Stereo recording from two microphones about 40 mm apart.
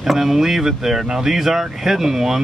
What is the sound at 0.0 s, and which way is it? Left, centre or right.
Speech, centre.